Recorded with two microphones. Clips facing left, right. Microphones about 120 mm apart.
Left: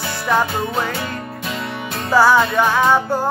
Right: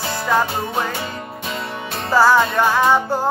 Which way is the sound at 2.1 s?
Centre (ahead or behind).